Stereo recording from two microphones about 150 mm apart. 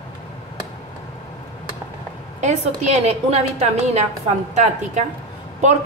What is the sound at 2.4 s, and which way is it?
A woman's voice, 50° right (ahead or behind).